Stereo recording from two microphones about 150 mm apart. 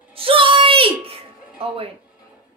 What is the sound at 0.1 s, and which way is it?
Music, 35° right (ahead or behind).